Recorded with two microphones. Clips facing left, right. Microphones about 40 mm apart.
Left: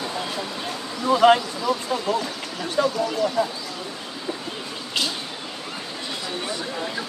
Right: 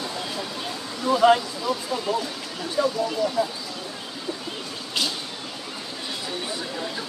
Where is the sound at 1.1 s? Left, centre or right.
Left.